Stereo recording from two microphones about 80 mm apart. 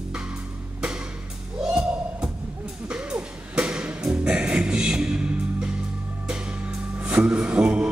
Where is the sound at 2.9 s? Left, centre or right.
Centre.